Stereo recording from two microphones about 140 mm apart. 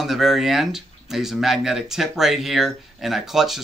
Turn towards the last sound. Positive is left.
turn(degrees=0)  # may be behind; listen again after turning